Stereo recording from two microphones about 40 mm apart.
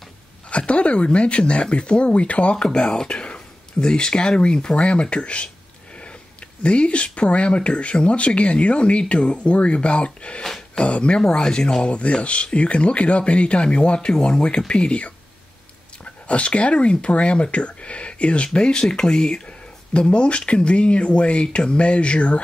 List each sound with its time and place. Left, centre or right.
0.5 s speech: left
2.5 s speech: left
6.6 s speech: left
10.4 s a sound: centre
10.8 s speech: left
16.3 s speech: left